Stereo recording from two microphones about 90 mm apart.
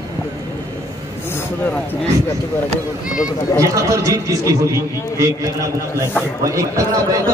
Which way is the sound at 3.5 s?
35° right (ahead or behind).